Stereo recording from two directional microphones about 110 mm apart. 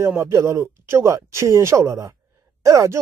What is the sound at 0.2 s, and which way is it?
Speech, 25° right (ahead or behind).